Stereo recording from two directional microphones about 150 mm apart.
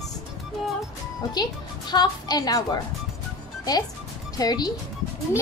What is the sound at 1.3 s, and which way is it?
A woman's voice, 30° left (ahead or behind).